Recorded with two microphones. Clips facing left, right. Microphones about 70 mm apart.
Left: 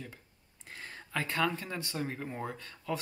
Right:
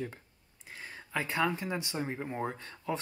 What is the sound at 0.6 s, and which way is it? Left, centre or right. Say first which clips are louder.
Speech: even; centre.